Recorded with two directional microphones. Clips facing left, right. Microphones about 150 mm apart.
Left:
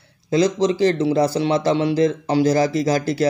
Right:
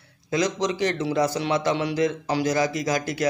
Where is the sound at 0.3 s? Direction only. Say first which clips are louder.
Left 7 dB; 30° left (ahead or behind).